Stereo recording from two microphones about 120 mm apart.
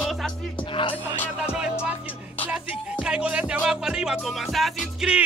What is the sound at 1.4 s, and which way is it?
Music, 5° right (ahead or behind).